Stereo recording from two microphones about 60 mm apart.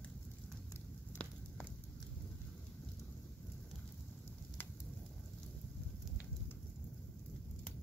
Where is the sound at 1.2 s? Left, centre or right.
Centre.